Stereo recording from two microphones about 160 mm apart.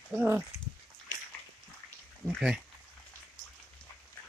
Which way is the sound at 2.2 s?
5° right (ahead or behind).